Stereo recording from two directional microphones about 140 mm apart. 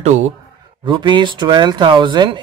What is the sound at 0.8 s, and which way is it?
Speech, 35° right (ahead or behind).